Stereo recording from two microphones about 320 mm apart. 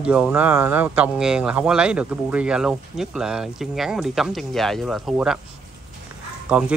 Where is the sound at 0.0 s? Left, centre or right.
Centre.